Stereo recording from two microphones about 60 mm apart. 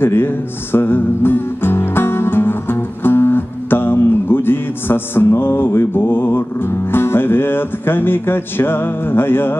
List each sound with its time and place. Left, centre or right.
0.0 s music: left